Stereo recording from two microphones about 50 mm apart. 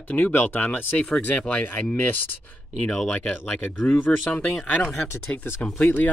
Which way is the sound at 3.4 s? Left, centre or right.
Left.